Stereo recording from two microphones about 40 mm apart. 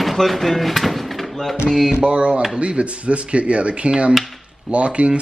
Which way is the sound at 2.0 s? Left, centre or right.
Right.